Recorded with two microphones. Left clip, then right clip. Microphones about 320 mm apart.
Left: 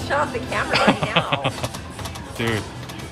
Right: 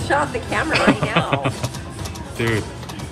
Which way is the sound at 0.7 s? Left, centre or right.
Centre.